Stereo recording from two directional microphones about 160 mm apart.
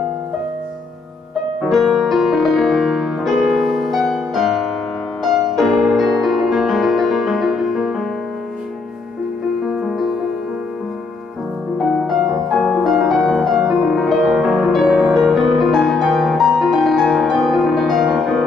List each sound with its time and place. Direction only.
1.6 s music: centre (ahead or behind)
9.7 s music: centre (ahead or behind)
11.8 s music: centre (ahead or behind)